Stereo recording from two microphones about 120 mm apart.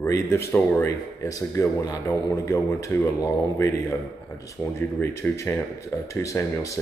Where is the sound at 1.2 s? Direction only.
30° left (ahead or behind).